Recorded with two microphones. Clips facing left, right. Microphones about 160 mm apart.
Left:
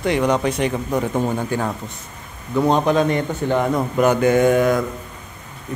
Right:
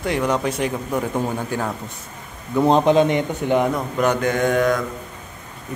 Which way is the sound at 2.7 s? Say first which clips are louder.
Right 2 dB; 25° right (ahead or behind).